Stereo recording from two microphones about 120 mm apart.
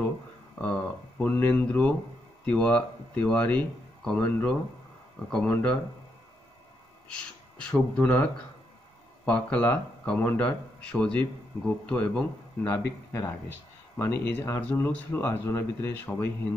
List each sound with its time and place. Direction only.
1.2 s speech: 15° left (ahead or behind)
7.5 s speech: 10° left (ahead or behind)
12.7 s speech: 25° left (ahead or behind)